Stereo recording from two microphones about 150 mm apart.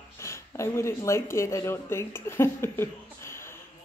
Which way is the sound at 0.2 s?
20° left (ahead or behind).